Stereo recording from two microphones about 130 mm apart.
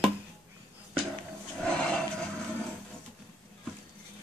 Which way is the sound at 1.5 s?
5° left (ahead or behind).